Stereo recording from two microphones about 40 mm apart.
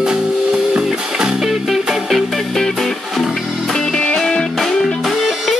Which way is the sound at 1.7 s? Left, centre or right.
Centre.